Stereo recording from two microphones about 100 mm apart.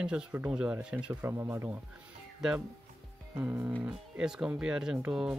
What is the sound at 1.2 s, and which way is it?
Speech, 25° right (ahead or behind).